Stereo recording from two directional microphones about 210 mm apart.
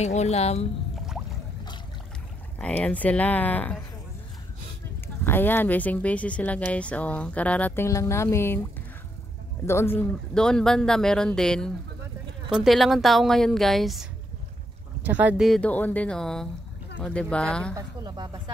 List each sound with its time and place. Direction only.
0.0 s speech: 30° left (ahead or behind)
2.6 s speech: 5° left (ahead or behind)
5.0 s speech: 10° left (ahead or behind)
9.7 s speech: 10° left (ahead or behind)
15.0 s speech: 10° right (ahead or behind)
17.7 s a woman's voice: 20° right (ahead or behind)